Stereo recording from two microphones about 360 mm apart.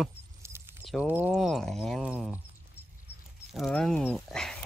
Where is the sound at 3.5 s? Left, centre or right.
Centre.